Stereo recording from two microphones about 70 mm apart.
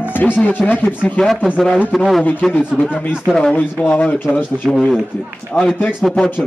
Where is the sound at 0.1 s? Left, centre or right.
Left.